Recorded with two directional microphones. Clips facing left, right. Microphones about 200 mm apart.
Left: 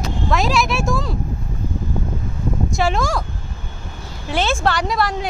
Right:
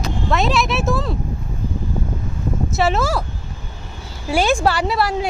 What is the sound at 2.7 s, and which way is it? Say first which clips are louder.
Speech: right 2 dB; 5° right (ahead or behind).